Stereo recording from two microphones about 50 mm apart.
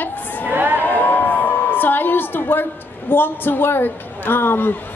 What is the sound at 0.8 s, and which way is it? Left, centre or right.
A woman's voice, left.